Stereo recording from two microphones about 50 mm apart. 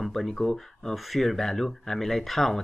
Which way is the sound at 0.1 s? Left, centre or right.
Centre.